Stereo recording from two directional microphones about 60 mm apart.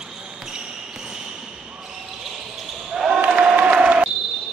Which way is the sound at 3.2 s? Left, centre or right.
Right.